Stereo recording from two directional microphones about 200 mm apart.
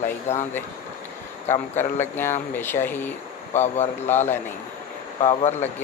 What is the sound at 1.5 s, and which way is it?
Speech, 35° left (ahead or behind).